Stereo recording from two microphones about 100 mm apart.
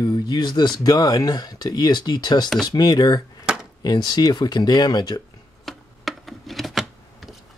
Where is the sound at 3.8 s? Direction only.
40° left (ahead or behind).